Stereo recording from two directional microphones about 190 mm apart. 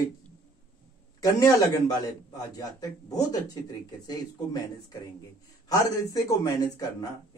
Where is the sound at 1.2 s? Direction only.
20° left (ahead or behind).